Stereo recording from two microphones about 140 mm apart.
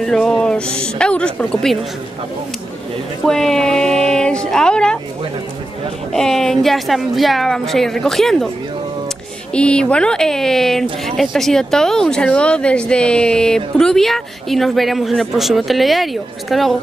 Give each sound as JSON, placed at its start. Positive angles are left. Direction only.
{"t": 0.0, "sound": "a woman's voice", "side_deg": 5}
{"t": 3.3, "sound": "speech", "side_deg": 5}
{"t": 6.1, "sound": "speech", "side_deg": 5}
{"t": 9.5, "sound": "speech", "side_deg": 5}